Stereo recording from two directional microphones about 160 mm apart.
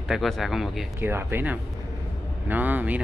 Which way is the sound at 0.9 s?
15° right (ahead or behind).